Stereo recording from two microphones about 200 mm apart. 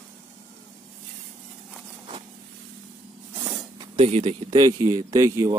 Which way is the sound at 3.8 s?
30° right (ahead or behind).